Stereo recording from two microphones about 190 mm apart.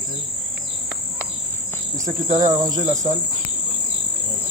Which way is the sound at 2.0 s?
40° right (ahead or behind).